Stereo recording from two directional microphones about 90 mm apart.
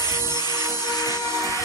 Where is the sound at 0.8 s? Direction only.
45° left (ahead or behind).